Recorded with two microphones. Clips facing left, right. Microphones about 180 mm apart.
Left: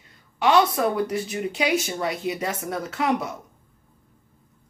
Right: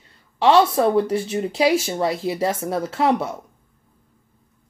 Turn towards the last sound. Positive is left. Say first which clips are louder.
# right 4 dB
turn(degrees=-30)  # may be behind; listen again after turning